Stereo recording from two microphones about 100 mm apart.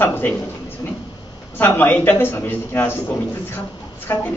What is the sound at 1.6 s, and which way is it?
A man's voice, 20° left (ahead or behind).